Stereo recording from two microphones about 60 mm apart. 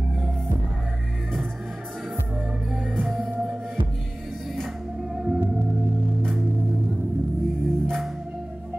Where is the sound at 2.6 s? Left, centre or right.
Centre.